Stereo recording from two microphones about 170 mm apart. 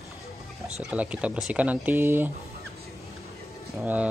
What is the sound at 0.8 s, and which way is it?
Speech, 5° right (ahead or behind).